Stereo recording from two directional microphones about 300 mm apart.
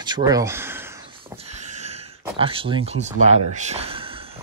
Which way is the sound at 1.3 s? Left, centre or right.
Right.